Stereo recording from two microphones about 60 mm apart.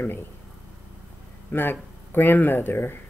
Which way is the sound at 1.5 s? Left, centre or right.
Left.